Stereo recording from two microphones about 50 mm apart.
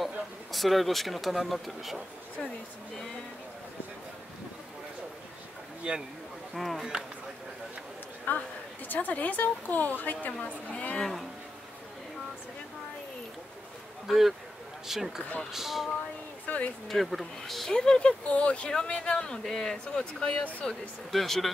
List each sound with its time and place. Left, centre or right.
0.0 s speech: centre
5.8 s speech: right
6.5 s speech: centre
6.8 s speech: centre
8.3 s a woman's voice: left
11.0 s speech: centre
14.0 s speech: centre
16.4 s a sound: left
16.8 s speech: centre
17.7 s speech: centre
20.0 s speech: left
21.1 s speech: centre